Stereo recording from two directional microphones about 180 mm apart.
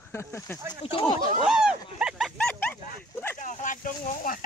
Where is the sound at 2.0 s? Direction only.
Centre (ahead or behind).